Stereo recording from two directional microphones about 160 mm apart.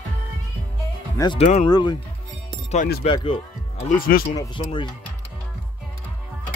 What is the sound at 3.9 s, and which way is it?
Speech, 65° left (ahead or behind).